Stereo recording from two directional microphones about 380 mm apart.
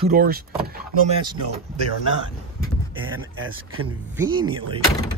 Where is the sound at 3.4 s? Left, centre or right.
Right.